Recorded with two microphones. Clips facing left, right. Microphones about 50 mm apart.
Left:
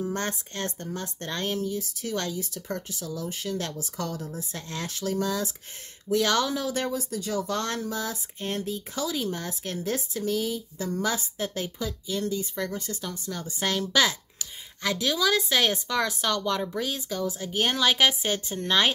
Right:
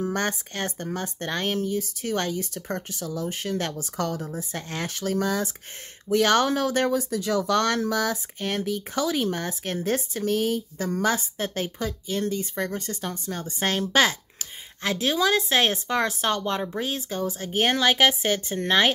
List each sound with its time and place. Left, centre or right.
0.0 s speech: right
4.5 s a woman's voice: right
4.9 s a woman's voice: right
16.4 s a woman's voice: right